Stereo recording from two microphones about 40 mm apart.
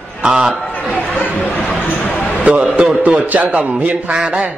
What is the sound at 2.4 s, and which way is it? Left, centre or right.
A man's voice, right.